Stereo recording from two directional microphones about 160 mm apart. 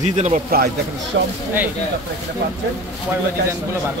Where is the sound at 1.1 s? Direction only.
90° right.